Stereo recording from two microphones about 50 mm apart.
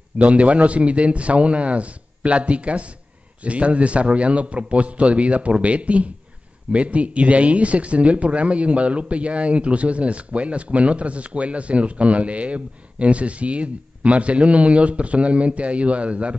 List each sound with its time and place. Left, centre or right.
0.2 s speech: right